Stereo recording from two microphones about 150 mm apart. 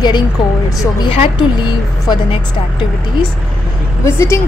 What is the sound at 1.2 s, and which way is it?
Speech, 30° left (ahead or behind).